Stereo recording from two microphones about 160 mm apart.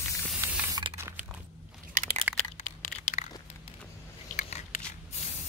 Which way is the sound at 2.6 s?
50° left (ahead or behind).